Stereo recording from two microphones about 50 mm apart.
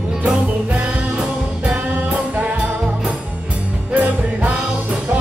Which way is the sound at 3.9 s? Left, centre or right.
Right.